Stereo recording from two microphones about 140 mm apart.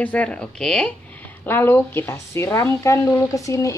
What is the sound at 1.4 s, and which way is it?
Speech, 15° left (ahead or behind).